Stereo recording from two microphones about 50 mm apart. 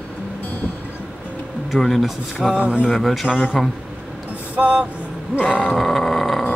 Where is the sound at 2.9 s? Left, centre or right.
Centre.